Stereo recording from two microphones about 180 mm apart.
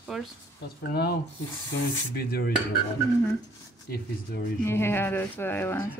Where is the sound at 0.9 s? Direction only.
60° left (ahead or behind).